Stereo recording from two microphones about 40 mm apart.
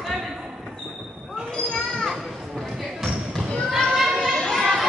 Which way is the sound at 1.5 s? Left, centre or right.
Centre.